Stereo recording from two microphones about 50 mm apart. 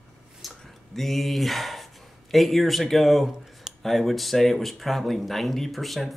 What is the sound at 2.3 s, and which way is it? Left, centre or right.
Speech, centre.